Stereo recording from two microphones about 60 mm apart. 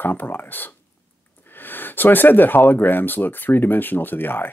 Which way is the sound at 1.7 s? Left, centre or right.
Left.